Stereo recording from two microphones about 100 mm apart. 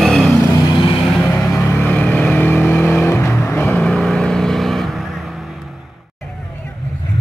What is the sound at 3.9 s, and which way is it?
Vehicle, 5° left (ahead or behind).